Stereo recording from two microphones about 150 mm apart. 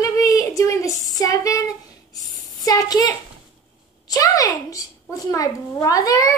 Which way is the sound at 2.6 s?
25° left (ahead or behind).